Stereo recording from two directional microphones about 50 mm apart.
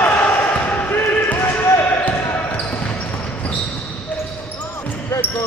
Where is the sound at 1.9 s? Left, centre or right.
Left.